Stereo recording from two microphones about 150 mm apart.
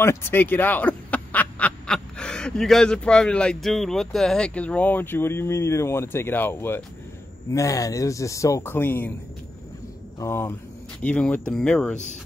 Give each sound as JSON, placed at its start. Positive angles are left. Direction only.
{"t": 0.0, "sound": "a man's voice", "side_deg": 15}
{"t": 10.1, "sound": "speech", "side_deg": 15}
{"t": 11.0, "sound": "speech", "side_deg": 5}